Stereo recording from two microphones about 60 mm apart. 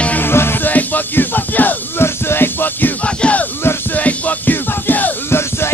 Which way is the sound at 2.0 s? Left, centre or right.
Left.